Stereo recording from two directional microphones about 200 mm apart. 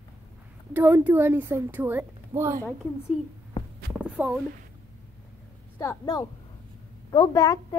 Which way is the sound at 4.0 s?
5° right (ahead or behind).